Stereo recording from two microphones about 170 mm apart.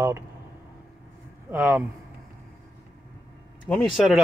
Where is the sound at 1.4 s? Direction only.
15° right (ahead or behind).